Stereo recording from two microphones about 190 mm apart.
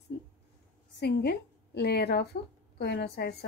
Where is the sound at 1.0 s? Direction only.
60° left (ahead or behind).